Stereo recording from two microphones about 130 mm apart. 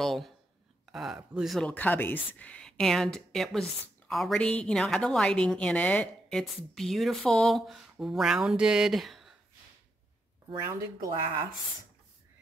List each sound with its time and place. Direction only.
0.0 s a woman's voice: centre (ahead or behind)
1.7 s a woman's voice: 15° left (ahead or behind)
10.7 s speech: 25° right (ahead or behind)